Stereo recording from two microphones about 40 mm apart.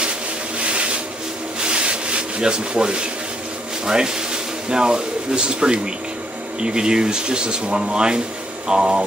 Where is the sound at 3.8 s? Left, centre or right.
Centre.